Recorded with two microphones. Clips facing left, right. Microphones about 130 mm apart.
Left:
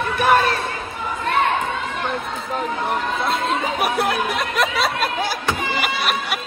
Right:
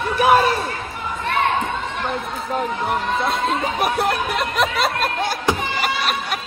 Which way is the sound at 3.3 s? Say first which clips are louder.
Even; centre (ahead or behind).